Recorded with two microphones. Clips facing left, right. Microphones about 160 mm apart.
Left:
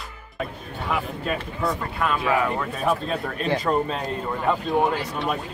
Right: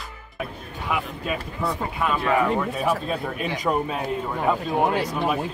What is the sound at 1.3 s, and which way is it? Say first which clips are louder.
Speech: left 1 dB; centre (ahead or behind).